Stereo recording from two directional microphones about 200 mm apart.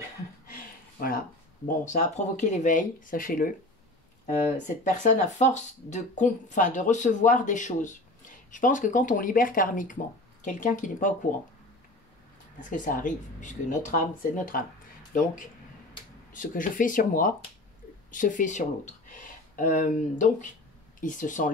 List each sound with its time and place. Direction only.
0.5 s a sound: 45° left (ahead or behind)
1.7 s speech: 40° left (ahead or behind)
12.5 s speech: 40° left (ahead or behind)
16.3 s speech: 40° left (ahead or behind)